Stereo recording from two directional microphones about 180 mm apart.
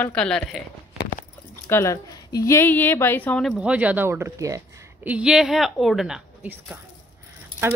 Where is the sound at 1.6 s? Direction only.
15° left (ahead or behind).